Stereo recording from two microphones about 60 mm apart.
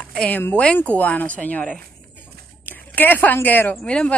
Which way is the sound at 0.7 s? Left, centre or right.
Left.